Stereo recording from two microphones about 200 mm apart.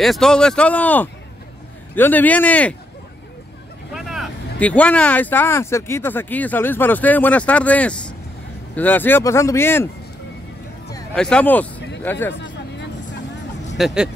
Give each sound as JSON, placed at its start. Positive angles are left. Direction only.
{"t": 0.0, "sound": "speech", "side_deg": 0}
{"t": 3.9, "sound": "speech", "side_deg": 0}
{"t": 11.1, "sound": "speech", "side_deg": 5}
{"t": 12.4, "sound": "music", "side_deg": 60}
{"t": 13.7, "sound": "speech", "side_deg": 0}